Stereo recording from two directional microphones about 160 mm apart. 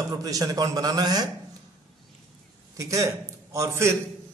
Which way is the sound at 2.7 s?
20° right (ahead or behind).